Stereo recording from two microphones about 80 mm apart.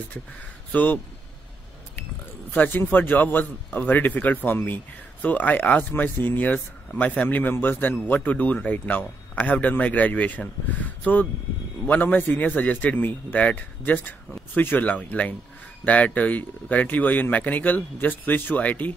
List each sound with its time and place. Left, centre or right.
0.7 s speech: centre
2.5 s speech: left